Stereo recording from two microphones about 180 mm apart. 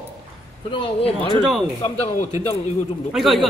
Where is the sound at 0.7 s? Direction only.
30° left (ahead or behind).